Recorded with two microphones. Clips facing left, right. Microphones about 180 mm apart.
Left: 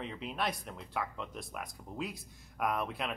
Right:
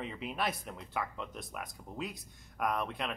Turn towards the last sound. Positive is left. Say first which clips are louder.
# even
turn(degrees=0)  # may be behind; listen again after turning